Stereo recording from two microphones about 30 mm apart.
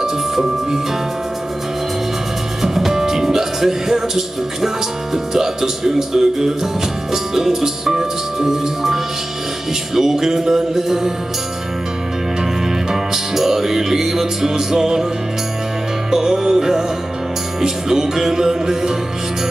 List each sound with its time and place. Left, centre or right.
0.0 s speech: centre
2.6 s music: centre
12.9 s music: centre
16.1 s music: centre